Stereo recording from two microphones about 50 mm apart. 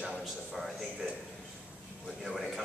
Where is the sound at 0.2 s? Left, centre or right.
Centre.